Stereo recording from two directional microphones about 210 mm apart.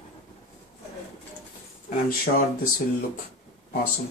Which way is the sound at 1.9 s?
45° left (ahead or behind).